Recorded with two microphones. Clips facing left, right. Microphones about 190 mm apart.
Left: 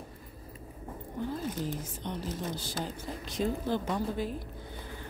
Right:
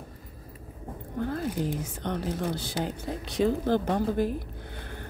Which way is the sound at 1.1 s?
65° right (ahead or behind).